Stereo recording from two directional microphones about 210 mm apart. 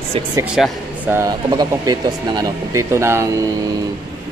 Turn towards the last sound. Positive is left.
turn(degrees=-15)  # may be behind; listen again after turning